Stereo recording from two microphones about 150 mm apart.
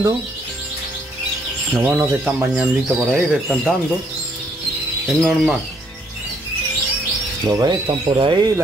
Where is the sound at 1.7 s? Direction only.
10° right (ahead or behind).